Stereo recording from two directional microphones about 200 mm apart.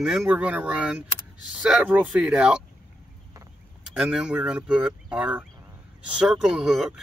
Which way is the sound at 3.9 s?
5° right (ahead or behind).